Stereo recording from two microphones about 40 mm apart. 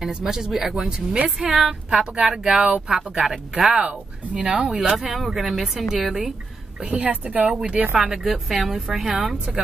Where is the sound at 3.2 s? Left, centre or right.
Centre.